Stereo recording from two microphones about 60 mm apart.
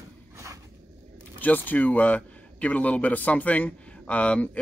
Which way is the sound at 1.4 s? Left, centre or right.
Left.